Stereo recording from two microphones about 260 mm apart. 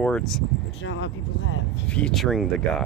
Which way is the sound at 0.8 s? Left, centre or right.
Left.